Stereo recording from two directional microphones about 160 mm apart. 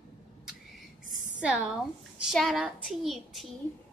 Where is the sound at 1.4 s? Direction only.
5° right (ahead or behind).